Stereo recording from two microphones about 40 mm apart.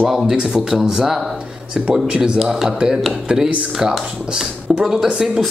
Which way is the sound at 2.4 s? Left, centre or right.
Centre.